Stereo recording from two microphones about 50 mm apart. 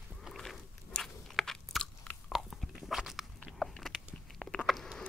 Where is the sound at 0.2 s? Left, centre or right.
Centre.